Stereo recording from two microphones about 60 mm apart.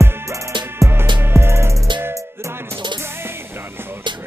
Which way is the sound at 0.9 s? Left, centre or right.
Right.